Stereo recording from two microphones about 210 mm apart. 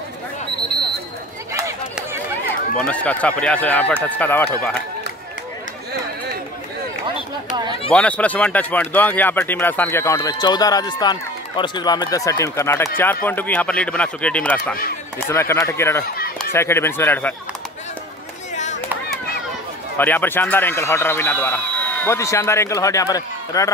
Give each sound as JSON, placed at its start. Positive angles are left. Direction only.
{"t": 1.5, "sound": "a sound", "side_deg": -15}
{"t": 2.8, "sound": "speech", "side_deg": 5}
{"t": 7.9, "sound": "speech", "side_deg": 5}
{"t": 18.5, "sound": "chop", "side_deg": 35}
{"t": 20.0, "sound": "speech", "side_deg": 10}